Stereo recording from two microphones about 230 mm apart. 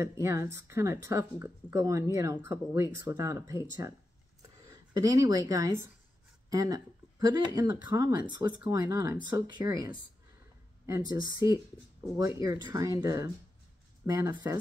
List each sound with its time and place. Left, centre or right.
0.0 s speech: centre
4.4 s a sound: centre
6.5 s speech: centre